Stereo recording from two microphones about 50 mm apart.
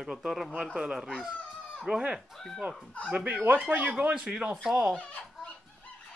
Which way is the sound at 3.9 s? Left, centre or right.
Right.